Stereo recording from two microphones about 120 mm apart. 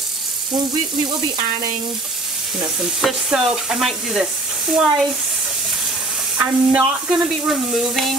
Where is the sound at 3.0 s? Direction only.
5° right (ahead or behind).